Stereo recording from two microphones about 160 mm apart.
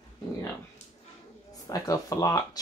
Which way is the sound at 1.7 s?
20° left (ahead or behind).